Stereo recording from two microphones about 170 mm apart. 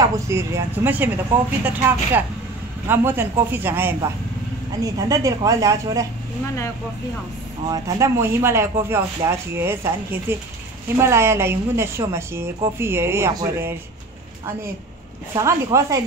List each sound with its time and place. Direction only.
0.0 s a woman's voice: 15° right (ahead or behind)
7.6 s a woman's voice: 20° right (ahead or behind)
15.3 s speech: 20° right (ahead or behind)